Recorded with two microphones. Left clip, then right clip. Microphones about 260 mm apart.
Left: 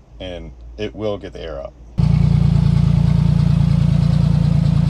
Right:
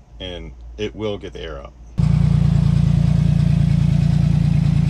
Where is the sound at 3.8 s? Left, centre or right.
Left.